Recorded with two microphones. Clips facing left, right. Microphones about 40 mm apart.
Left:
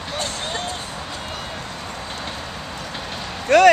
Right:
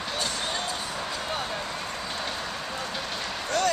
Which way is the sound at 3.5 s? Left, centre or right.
Left.